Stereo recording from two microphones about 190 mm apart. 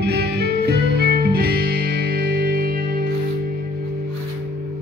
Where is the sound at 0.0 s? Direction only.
60° right (ahead or behind).